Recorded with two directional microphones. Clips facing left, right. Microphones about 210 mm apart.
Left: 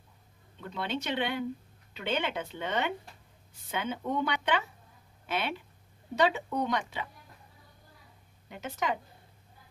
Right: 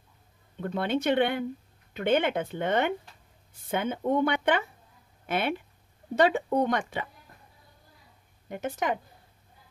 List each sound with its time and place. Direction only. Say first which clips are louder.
0.6 s speech: right 7 dB; 50° right (ahead or behind)
8.5 s speech: right 4 dB; 50° right (ahead or behind)